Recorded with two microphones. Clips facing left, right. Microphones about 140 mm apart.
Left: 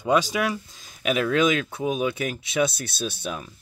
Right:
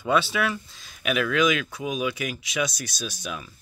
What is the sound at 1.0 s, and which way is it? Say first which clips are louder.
Speech: left 1 dB; 30° left (ahead or behind).